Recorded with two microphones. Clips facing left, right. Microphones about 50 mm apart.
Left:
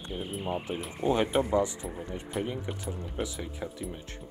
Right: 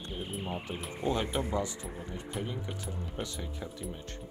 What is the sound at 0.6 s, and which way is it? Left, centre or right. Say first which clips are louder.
Speech: left 4 dB; centre.